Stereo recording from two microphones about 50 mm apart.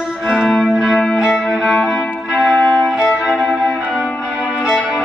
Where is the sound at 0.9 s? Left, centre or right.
Centre.